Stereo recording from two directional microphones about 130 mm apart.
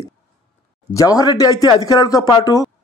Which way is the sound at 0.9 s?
25° left (ahead or behind).